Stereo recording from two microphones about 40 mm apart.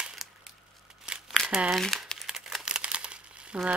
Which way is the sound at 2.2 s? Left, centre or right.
Centre.